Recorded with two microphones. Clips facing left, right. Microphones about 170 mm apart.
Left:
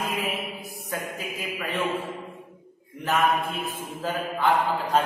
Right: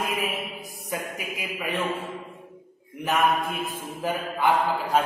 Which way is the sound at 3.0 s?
15° right (ahead or behind).